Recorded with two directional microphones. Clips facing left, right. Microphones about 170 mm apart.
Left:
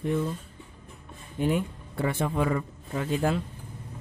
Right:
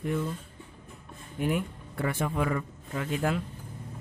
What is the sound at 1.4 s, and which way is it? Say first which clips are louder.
Speech: left 3 dB; 25° left (ahead or behind).